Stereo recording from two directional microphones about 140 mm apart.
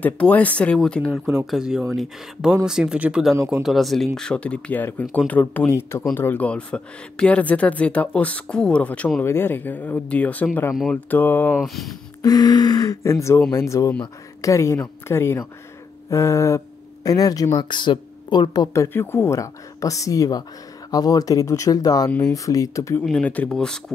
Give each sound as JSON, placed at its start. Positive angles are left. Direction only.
{"t": 0.0, "sound": "speech", "side_deg": 10}
{"t": 1.5, "sound": "speech", "side_deg": -5}
{"t": 10.7, "sound": "speech", "side_deg": 0}
{"t": 11.1, "sound": "speech", "side_deg": 15}
{"t": 11.5, "sound": "speech", "side_deg": 0}
{"t": 12.2, "sound": "speech", "side_deg": 30}
{"t": 23.2, "sound": "speech", "side_deg": 10}